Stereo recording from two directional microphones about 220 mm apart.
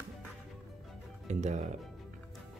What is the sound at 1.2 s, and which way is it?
Music, 30° right (ahead or behind).